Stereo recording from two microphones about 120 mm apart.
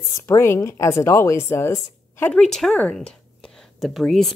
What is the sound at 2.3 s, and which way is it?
Speech, 5° left (ahead or behind).